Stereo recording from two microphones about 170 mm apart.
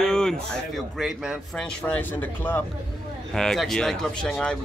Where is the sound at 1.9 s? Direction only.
10° left (ahead or behind).